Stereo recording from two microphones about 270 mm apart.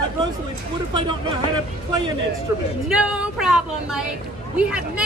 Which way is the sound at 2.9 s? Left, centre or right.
Centre.